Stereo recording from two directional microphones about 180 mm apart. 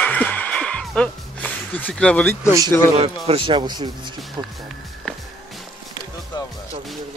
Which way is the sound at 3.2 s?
30° right (ahead or behind).